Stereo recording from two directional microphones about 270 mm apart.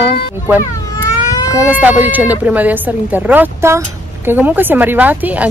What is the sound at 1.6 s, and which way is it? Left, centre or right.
A woman's voice, centre.